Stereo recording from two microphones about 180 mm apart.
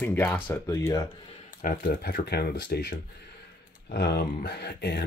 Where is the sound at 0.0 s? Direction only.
10° left (ahead or behind).